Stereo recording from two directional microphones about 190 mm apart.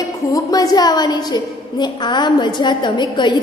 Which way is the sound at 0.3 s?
20° left (ahead or behind).